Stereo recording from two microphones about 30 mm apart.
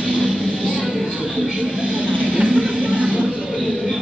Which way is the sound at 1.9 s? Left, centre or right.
Right.